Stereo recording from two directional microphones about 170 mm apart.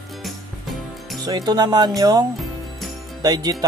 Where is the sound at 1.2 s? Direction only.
25° right (ahead or behind).